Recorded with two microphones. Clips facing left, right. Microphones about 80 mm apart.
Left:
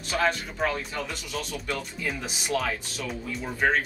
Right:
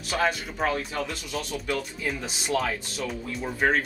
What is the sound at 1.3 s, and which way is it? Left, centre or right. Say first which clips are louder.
Speech: right 2 dB; centre.